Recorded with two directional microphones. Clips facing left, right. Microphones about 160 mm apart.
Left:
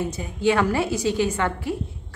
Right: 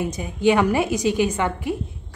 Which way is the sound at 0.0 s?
15° right (ahead or behind).